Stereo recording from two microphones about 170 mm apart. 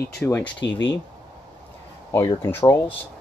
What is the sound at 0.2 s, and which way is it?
Speech, 5° left (ahead or behind).